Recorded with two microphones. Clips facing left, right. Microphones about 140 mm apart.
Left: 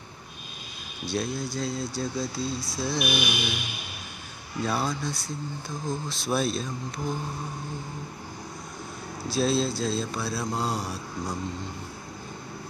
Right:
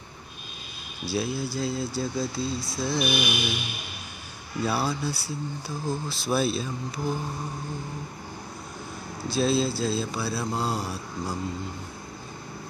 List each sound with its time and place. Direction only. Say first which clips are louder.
1.0 s speech: right 1 dB; 5° right (ahead or behind)
4.6 s speech: right 1 dB; 5° right (ahead or behind)
9.3 s speech: right 1 dB; centre (ahead or behind)